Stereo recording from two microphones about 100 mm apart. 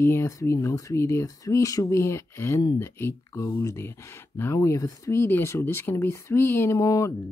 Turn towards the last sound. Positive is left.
turn(degrees=35)  # may be behind; listen again after turning